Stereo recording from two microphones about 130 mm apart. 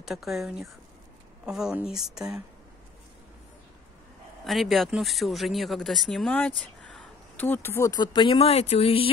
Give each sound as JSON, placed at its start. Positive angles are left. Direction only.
{"t": 0.0, "sound": "speech", "side_deg": 0}
{"t": 4.5, "sound": "speech", "side_deg": 0}
{"t": 8.0, "sound": "speech", "side_deg": 35}
{"t": 8.4, "sound": "speech", "side_deg": 50}